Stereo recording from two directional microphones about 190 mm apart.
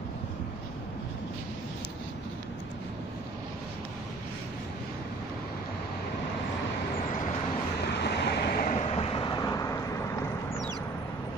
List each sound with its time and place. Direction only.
8.0 s waves: 60° left (ahead or behind)
8.7 s vehicle: 30° left (ahead or behind)